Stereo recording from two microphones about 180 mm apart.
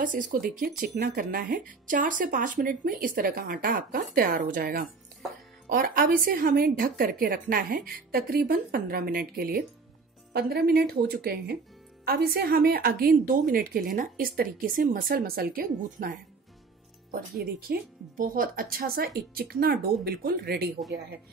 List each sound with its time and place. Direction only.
0.0 s a woman's voice: 45° right (ahead or behind)